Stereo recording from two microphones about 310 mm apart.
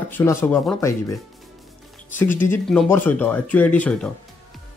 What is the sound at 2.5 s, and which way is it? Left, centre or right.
Speech, centre.